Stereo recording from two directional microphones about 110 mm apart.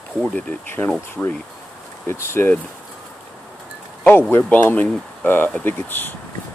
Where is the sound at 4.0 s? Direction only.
20° left (ahead or behind).